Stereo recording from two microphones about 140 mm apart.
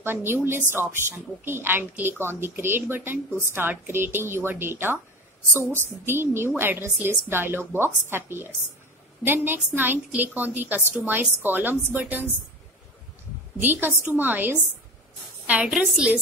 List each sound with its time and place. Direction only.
0.0 s a woman's voice: 15° right (ahead or behind)
13.6 s a woman's voice: 15° right (ahead or behind)